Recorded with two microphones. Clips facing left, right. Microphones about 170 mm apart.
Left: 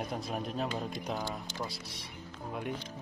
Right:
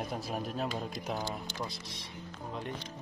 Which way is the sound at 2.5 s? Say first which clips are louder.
Left 3 dB; 10° left (ahead or behind).